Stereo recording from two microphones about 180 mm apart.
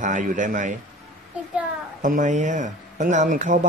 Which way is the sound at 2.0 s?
45° right (ahead or behind).